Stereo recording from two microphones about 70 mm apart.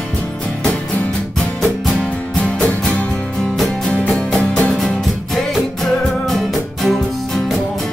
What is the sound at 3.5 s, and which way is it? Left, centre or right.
Music, centre.